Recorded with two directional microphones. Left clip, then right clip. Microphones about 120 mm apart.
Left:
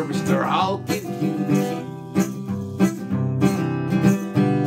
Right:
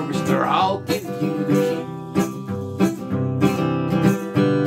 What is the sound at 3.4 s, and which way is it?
Music, 20° left (ahead or behind).